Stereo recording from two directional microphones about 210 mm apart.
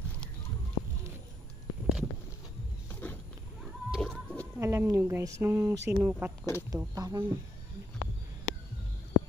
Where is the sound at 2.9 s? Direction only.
10° left (ahead or behind).